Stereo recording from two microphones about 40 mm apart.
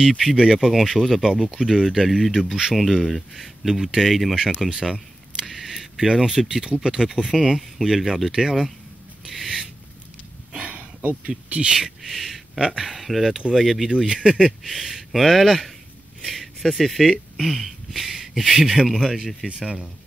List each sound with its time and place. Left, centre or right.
0.4 s speech: centre
4.9 s camera: centre
5.5 s a sound: centre
6.4 s speech: centre
9.3 s a sound: centre
10.6 s a sound: right
11.2 s speech: right
11.7 s speech: centre
13.8 s speech: centre
19.1 s speech: centre